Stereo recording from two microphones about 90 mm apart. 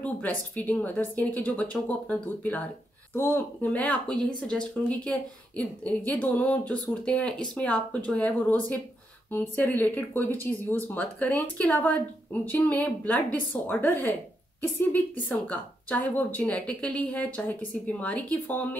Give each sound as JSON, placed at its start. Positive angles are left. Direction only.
{"t": 0.0, "sound": "a woman's voice", "side_deg": 15}
{"t": 3.6, "sound": "a woman's voice", "side_deg": 15}